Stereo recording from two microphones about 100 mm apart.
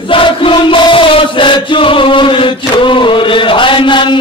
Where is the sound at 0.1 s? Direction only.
60° left (ahead or behind).